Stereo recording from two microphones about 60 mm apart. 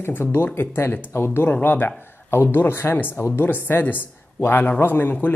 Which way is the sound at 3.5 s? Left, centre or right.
Left.